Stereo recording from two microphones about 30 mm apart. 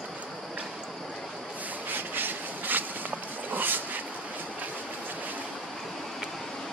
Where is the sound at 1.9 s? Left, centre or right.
Right.